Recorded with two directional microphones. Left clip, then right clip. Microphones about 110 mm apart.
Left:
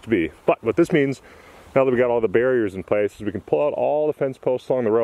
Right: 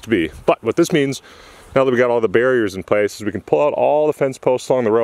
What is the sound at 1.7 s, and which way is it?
Speech, 35° right (ahead or behind).